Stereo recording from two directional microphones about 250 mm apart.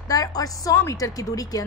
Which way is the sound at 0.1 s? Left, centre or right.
Centre.